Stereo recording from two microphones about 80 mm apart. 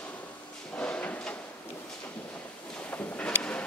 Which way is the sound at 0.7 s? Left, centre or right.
Centre.